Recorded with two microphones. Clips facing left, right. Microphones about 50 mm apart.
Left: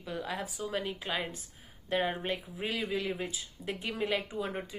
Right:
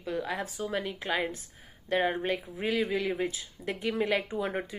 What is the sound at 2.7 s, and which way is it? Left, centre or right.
Speech, centre.